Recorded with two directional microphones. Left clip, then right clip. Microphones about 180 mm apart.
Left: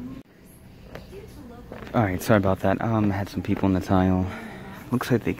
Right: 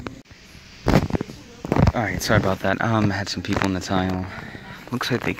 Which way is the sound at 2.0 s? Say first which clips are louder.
Even; 15° left (ahead or behind).